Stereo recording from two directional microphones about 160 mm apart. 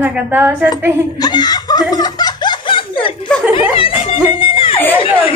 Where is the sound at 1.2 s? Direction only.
25° left (ahead or behind).